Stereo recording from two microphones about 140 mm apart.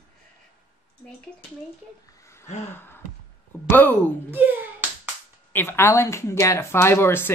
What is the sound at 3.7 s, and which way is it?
Speech, 15° left (ahead or behind).